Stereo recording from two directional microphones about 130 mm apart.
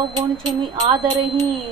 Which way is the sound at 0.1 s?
40° right (ahead or behind).